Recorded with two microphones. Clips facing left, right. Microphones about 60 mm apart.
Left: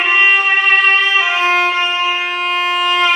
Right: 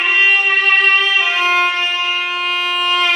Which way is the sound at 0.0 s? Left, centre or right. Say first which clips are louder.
Left 2 dB; centre.